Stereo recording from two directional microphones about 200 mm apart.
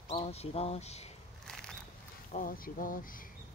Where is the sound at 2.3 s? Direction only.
45° left (ahead or behind).